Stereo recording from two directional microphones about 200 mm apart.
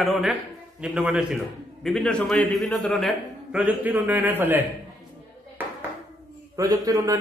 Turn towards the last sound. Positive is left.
turn(degrees=-15)  # may be behind; listen again after turning